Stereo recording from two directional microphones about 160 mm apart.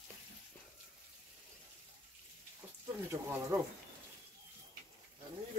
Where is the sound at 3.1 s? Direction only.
20° right (ahead or behind).